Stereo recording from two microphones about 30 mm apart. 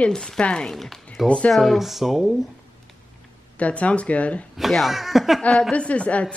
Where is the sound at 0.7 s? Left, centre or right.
Centre.